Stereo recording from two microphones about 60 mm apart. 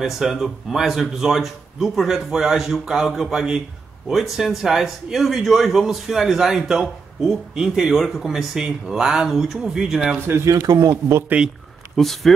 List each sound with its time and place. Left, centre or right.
0.0 s a man's voice: centre
7.9 s speech: centre
10.2 s speech: right
12.0 s a man's voice: centre